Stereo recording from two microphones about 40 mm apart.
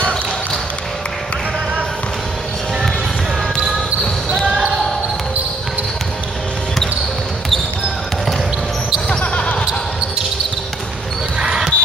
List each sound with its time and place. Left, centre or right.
9.2 s basketball bounce: left
11.4 s basketball bounce: centre